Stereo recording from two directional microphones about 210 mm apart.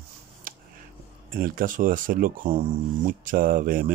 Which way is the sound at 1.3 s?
40° right (ahead or behind).